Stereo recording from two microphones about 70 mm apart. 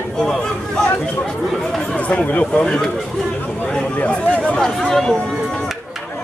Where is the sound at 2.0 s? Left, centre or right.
Centre.